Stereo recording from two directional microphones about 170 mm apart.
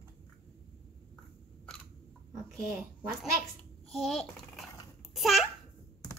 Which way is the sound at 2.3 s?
20° right (ahead or behind).